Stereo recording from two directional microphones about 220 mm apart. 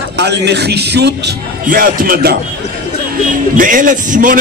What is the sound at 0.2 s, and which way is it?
A man's voice, 50° right (ahead or behind).